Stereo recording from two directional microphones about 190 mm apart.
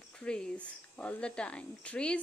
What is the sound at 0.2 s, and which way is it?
A woman's voice, 5° left (ahead or behind).